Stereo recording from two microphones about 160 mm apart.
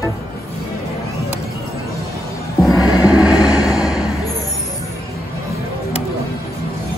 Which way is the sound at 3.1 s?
10° right (ahead or behind).